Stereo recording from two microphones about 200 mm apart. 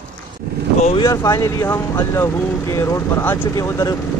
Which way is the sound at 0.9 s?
20° left (ahead or behind).